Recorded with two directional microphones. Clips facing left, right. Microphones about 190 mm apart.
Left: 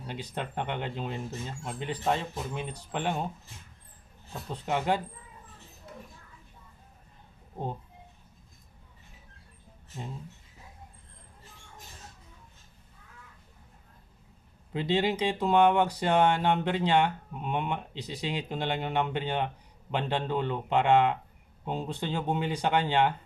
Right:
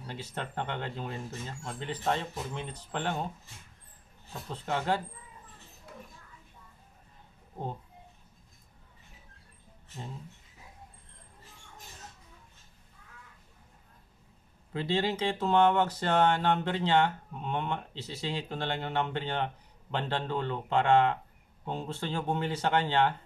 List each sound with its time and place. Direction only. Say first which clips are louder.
0.0 s speech: left 3 dB; 15° left (ahead or behind)
4.5 s speech: left 2 dB; 15° left (ahead or behind)
14.7 s speech: left 3 dB; 20° left (ahead or behind)